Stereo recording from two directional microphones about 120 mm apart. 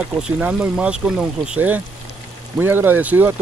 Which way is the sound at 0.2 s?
10° right (ahead or behind).